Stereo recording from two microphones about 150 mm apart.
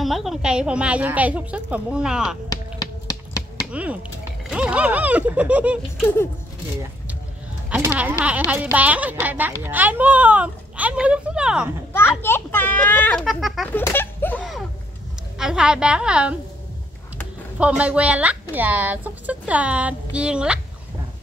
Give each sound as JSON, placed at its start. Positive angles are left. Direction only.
{"t": 0.0, "sound": "speech", "side_deg": 0}
{"t": 2.5, "sound": "finger snapping", "side_deg": 25}
{"t": 3.7, "sound": "speech", "side_deg": -10}
{"t": 7.8, "sound": "speech", "side_deg": -10}
{"t": 11.9, "sound": "a child's voice", "side_deg": 15}
{"t": 13.2, "sound": "a woman's voice", "side_deg": 0}
{"t": 13.7, "sound": "speech", "side_deg": 15}
{"t": 15.3, "sound": "a woman's voice", "side_deg": -5}
{"t": 17.6, "sound": "speech", "side_deg": -10}